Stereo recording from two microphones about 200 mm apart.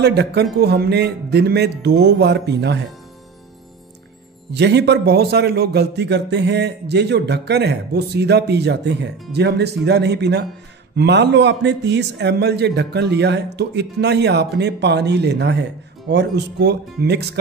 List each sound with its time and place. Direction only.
0.0 s a man's voice: 55° right (ahead or behind)
4.5 s a man's voice: 55° right (ahead or behind)